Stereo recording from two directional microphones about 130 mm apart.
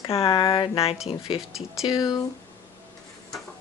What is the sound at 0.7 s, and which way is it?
Speech, 45° left (ahead or behind).